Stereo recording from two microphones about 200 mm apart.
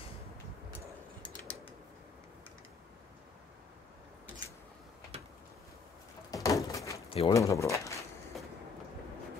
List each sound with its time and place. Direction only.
1.3 s a sound: 5° left (ahead or behind)
5.1 s boat: 30° right (ahead or behind)
6.3 s door: 15° left (ahead or behind)
7.1 s speech: 25° left (ahead or behind)
7.3 s speech: 15° left (ahead or behind)